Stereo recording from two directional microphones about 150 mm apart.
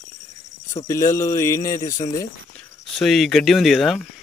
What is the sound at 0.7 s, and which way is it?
Speech, 20° left (ahead or behind).